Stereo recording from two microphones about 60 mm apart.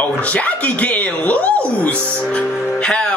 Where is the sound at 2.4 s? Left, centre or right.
Centre.